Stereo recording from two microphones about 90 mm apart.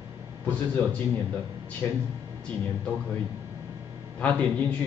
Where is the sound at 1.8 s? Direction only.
20° left (ahead or behind).